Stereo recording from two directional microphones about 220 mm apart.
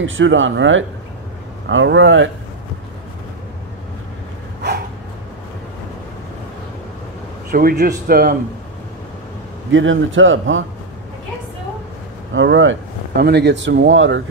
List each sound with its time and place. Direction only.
0.0 s speech: 60° right (ahead or behind)
7.5 s speech: 40° right (ahead or behind)
9.7 s speech: 60° right (ahead or behind)
12.4 s speech: 60° right (ahead or behind)